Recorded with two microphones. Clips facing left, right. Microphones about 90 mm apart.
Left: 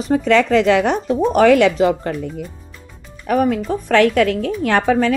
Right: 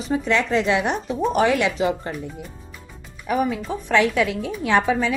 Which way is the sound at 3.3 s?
55° left (ahead or behind).